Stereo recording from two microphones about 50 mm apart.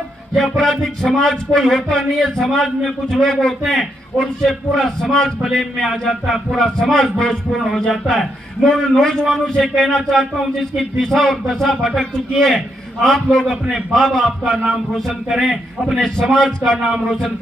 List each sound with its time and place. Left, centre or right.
0.4 s a man's voice: centre
6.5 s a man's voice: centre
8.6 s a man's voice: centre
9.3 s a man's voice: centre
13.7 s a man's voice: centre
14.0 s a man's voice: centre
15.2 s a sound: centre